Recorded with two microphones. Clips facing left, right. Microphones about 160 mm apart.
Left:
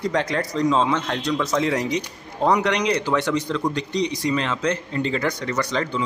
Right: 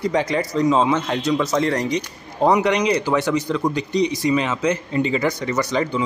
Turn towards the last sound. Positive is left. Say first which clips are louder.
# right 3 dB
turn(degrees=-10)  # may be behind; listen again after turning